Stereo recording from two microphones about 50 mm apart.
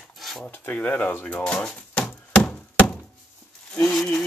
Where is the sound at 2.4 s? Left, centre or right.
Left.